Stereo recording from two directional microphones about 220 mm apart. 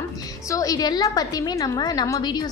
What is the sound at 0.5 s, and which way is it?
A woman's voice, 15° left (ahead or behind).